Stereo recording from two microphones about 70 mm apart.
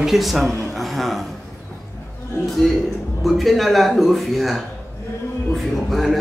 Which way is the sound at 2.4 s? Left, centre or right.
Centre.